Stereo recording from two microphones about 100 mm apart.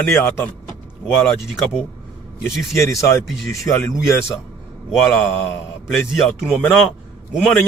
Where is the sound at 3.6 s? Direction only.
30° left (ahead or behind).